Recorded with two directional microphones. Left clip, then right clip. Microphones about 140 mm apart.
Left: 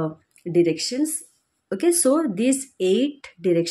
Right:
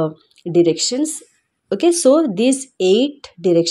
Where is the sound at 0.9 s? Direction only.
30° right (ahead or behind).